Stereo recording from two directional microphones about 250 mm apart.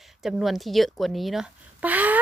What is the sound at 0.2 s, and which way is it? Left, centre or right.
A woman's voice, centre.